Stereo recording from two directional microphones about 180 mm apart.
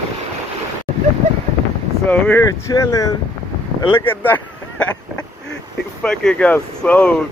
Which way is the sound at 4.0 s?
10° left (ahead or behind).